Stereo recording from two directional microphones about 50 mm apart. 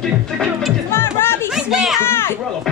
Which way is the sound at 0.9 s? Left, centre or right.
Left.